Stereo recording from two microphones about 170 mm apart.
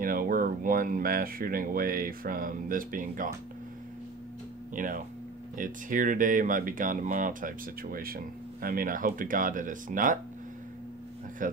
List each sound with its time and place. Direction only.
0.0 s speech: 60° right (ahead or behind)
4.7 s speech: 50° right (ahead or behind)
11.4 s speech: 50° right (ahead or behind)